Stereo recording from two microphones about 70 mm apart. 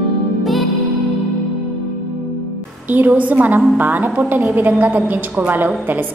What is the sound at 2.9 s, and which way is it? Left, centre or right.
A woman's voice, right.